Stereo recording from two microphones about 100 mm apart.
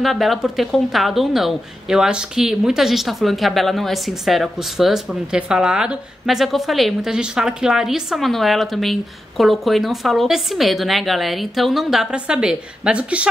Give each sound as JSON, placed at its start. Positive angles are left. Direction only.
{"t": 0.0, "sound": "a woman's voice", "side_deg": 0}